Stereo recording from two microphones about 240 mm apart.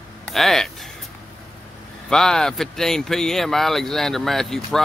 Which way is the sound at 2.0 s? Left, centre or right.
Centre.